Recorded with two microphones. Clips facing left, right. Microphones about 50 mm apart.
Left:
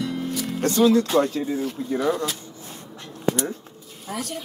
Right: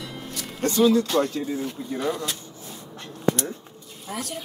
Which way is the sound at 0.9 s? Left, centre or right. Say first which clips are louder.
Left 2 dB; centre.